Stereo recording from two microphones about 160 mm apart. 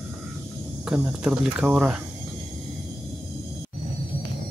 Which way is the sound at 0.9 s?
5° right (ahead or behind).